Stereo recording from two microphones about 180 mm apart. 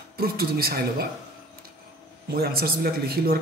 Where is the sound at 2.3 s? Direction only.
55° right (ahead or behind).